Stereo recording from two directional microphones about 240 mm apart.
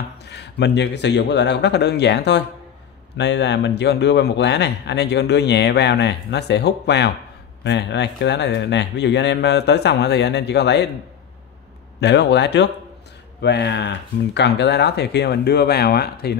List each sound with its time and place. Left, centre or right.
0.2 s a man's voice: left
12.0 s a man's voice: left